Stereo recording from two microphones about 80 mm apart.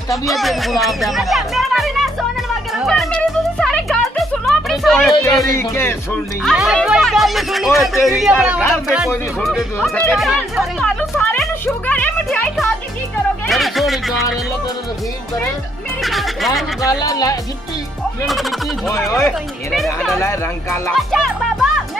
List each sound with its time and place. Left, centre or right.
0.1 s speech: centre
2.9 s music: centre
4.0 s music: centre
5.6 s speech: left
6.4 s speech: centre
10.8 s speech: centre
13.5 s speech: centre
16.0 s speech: centre
16.8 s speech: left
18.2 s speech: centre
20.2 s speech: left
20.9 s speech: centre